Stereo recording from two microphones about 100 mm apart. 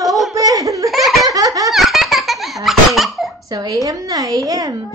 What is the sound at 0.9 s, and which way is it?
Laughter, centre (ahead or behind).